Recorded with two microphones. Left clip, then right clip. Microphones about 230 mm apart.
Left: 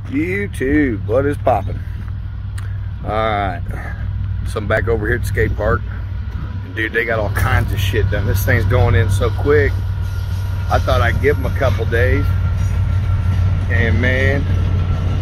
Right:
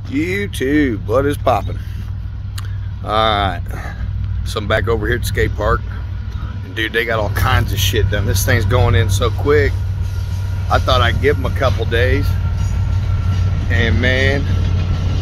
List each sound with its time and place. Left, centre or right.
0.1 s speech: centre
3.1 s speech: centre
12.2 s vehicle: left
13.7 s speech: centre